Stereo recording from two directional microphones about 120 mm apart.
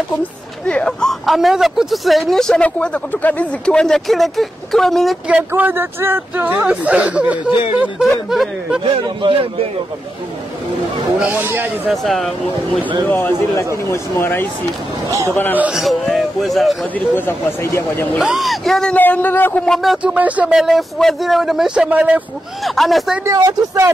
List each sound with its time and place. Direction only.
0.2 s speech: 10° left (ahead or behind)
5.5 s speech: 20° right (ahead or behind)
8.8 s speech: 40° right (ahead or behind)
11.1 s speech: 15° right (ahead or behind)
11.9 s speech: centre (ahead or behind)
13.8 s speech: 20° left (ahead or behind)
15.0 s speech: 25° right (ahead or behind)
15.5 s speech: 10° right (ahead or behind)
15.8 s speech: centre (ahead or behind)
17.1 s speech: 20° left (ahead or behind)
18.2 s speech: centre (ahead or behind)
18.9 s speech: 15° left (ahead or behind); by 22.2 s 10° right (ahead or behind)
22.6 s speech: centre (ahead or behind)
23.2 s speech: 30° right (ahead or behind)